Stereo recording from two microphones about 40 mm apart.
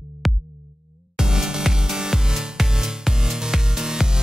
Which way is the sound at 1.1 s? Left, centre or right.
Centre.